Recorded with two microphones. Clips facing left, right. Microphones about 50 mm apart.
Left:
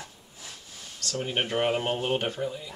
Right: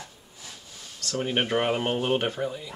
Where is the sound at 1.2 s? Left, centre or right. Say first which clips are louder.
Right 2 dB; right.